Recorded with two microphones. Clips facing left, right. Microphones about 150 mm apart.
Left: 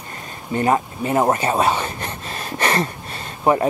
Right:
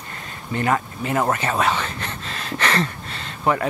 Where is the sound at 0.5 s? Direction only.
25° left (ahead or behind).